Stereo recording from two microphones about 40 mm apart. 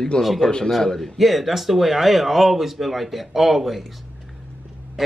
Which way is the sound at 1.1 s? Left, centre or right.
Centre.